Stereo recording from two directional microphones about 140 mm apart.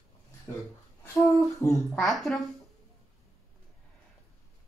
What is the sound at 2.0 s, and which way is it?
Speech, centre (ahead or behind).